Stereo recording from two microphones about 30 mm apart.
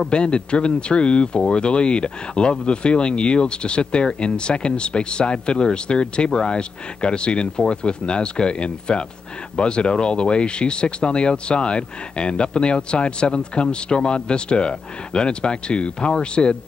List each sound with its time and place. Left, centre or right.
0.1 s speech: left